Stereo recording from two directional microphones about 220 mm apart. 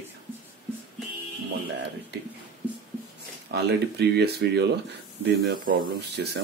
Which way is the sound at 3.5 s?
50° right (ahead or behind).